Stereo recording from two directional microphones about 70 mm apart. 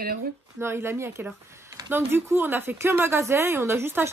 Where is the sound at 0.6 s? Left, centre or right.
Right.